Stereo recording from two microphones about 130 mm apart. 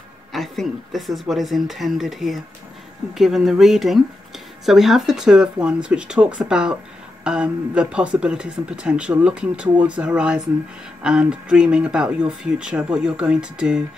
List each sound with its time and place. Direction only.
0.3 s speech: centre (ahead or behind)